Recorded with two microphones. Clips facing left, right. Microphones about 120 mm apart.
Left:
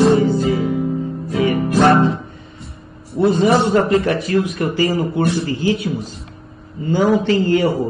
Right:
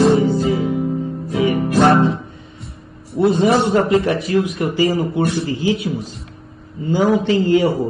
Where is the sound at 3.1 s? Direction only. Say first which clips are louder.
Even; centre (ahead or behind).